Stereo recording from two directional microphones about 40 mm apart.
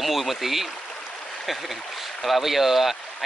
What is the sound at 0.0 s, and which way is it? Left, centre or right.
Speech, centre.